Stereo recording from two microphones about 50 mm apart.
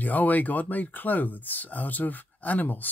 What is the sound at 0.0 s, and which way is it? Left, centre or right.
Speech, left.